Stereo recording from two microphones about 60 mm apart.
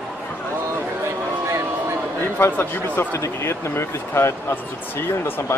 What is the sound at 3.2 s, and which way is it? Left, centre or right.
Speech, left.